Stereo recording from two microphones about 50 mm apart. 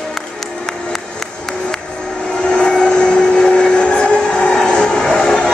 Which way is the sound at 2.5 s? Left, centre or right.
Centre.